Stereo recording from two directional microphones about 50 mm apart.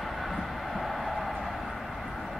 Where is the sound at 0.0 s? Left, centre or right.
Centre.